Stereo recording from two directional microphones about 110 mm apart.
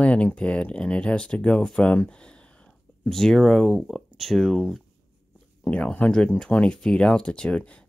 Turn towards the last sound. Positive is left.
turn(degrees=10)  # may be behind; listen again after turning